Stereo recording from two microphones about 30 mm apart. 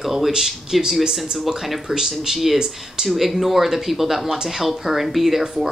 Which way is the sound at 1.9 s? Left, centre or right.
Centre.